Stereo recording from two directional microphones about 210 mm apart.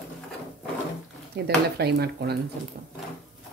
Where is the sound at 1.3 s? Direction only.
55° right (ahead or behind).